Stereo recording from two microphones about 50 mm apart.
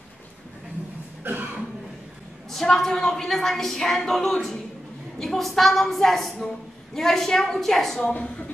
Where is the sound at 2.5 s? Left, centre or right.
Centre.